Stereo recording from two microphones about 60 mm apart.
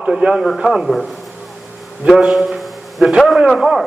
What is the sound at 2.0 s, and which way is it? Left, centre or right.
A man's voice, centre.